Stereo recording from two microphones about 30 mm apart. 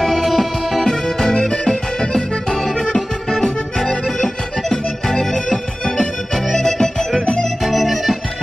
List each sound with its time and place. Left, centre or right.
0.0 s music: centre
0.3 s music: centre
0.8 s music: centre
2.0 s accordion: left
4.8 s music: centre
5.9 s organ: centre
7.6 s music: centre